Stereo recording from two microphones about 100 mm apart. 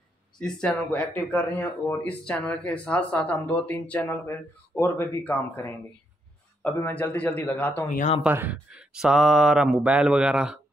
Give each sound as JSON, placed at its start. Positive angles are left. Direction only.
{"t": 0.4, "sound": "speech", "side_deg": 10}
{"t": 8.3, "sound": "speech", "side_deg": -15}